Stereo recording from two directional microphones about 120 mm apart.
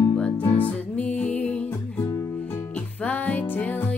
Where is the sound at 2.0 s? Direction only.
30° left (ahead or behind).